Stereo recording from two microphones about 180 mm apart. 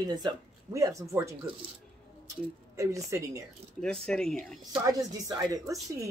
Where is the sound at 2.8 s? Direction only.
15° right (ahead or behind).